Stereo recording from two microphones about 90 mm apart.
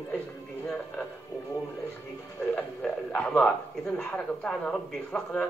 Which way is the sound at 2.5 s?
15° left (ahead or behind).